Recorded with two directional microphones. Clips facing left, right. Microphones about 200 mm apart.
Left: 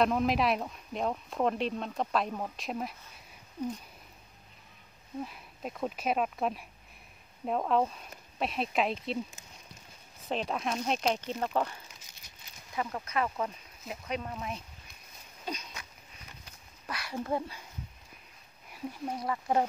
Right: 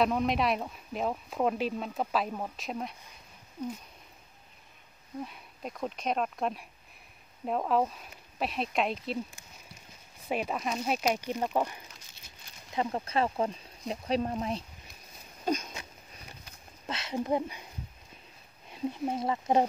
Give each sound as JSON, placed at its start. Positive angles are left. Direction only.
{"t": 0.0, "sound": "speech", "side_deg": 0}
{"t": 5.2, "sound": "speech", "side_deg": 0}
{"t": 10.2, "sound": "speech", "side_deg": -10}
{"t": 12.7, "sound": "speech", "side_deg": -25}
{"t": 15.4, "sound": "a sound", "side_deg": -45}
{"t": 16.8, "sound": "speech", "side_deg": -25}
{"t": 18.7, "sound": "speech", "side_deg": -25}